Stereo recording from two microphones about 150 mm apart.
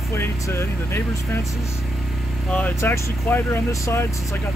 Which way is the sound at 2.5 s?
10° left (ahead or behind).